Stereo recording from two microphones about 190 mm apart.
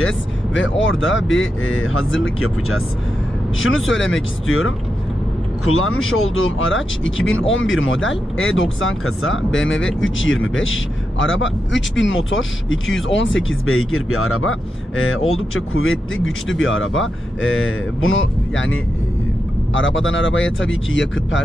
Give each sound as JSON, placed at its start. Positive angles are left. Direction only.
{"t": 0.6, "sound": "speech", "side_deg": 90}